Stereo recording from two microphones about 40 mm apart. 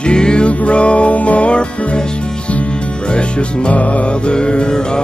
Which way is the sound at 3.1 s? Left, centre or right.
Left.